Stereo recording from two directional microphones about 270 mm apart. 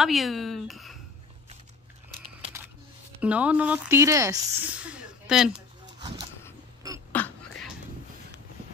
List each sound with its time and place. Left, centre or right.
0.0 s speech: centre
3.2 s speech: centre
5.9 s bird: centre
7.1 s a sound: centre